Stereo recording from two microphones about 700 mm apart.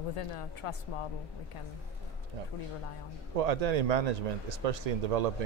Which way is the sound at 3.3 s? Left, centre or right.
Right.